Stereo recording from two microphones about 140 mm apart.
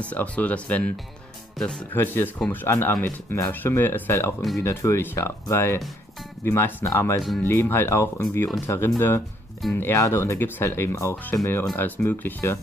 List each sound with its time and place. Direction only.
0.0 s speech: 10° left (ahead or behind)
2.0 s speech: 15° left (ahead or behind)
7.2 s speech: centre (ahead or behind)
7.4 s speech: 15° left (ahead or behind)